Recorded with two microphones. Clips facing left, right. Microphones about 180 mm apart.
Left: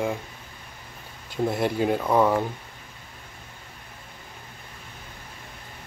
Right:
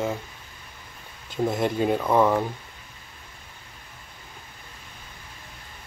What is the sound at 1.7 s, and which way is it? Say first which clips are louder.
Speech: right 1 dB; 5° left (ahead or behind).